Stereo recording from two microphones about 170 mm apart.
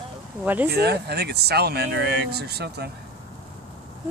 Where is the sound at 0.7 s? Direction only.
70° right (ahead or behind).